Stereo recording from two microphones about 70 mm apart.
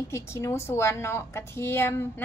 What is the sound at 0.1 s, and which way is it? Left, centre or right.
Speech, left.